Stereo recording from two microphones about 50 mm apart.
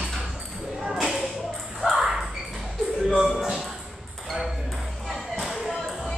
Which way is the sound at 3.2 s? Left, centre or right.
Centre.